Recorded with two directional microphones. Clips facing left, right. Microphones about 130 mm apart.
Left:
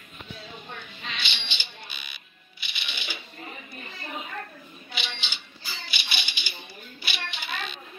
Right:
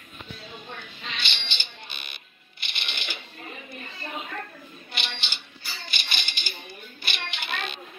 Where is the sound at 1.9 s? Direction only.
55° right (ahead or behind).